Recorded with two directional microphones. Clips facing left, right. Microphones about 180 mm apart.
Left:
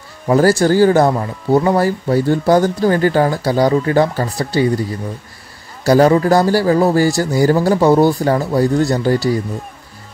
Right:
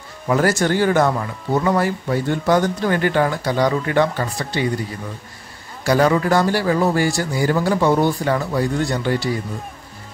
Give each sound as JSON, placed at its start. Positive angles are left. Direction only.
{"t": 0.3, "sound": "speech", "side_deg": 35}
{"t": 5.9, "sound": "speech", "side_deg": 35}